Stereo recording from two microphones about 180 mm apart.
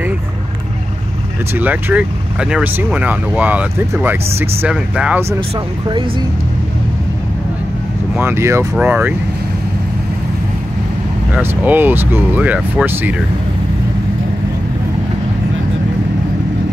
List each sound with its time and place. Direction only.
1.5 s speech: 10° right (ahead or behind)
8.2 s speech: 15° right (ahead or behind)
11.3 s speech: 10° right (ahead or behind)